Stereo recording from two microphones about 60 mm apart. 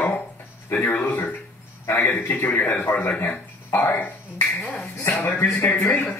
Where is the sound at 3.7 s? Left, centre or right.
Left.